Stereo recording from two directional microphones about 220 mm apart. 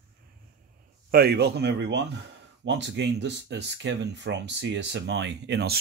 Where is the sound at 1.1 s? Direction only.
45° right (ahead or behind).